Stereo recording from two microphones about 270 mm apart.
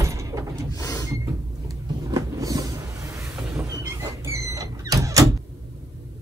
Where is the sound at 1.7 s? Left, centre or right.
Centre.